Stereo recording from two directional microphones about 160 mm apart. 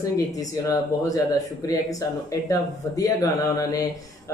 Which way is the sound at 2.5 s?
20° left (ahead or behind).